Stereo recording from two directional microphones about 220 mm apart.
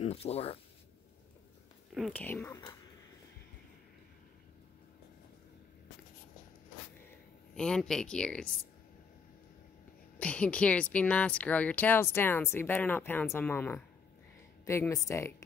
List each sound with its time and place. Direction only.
0.0 s speech: 30° left (ahead or behind)
2.0 s speech: 5° left (ahead or behind)
7.5 s speech: 5° left (ahead or behind)
10.1 s speech: 5° left (ahead or behind)